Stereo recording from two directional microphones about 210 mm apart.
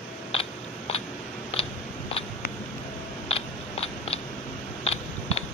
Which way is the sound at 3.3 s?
30° left (ahead or behind).